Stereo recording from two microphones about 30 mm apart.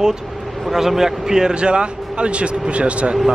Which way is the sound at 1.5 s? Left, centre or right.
Right.